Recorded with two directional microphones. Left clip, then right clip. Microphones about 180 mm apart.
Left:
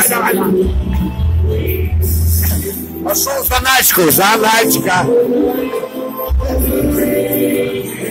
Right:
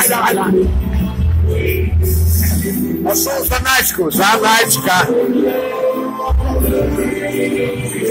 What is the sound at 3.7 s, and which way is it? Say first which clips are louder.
Music: left 5 dB; 35° left (ahead or behind).